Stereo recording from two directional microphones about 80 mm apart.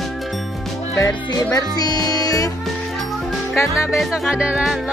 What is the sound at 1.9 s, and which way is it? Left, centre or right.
Music, left.